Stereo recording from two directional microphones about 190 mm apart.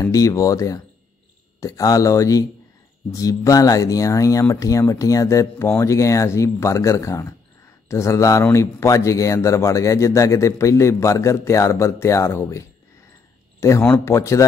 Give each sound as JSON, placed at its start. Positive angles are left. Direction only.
{"t": 0.0, "sound": "speech", "side_deg": 20}